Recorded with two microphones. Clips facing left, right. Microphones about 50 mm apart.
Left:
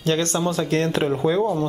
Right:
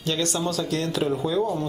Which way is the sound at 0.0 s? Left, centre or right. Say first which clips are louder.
Left 4 dB; left.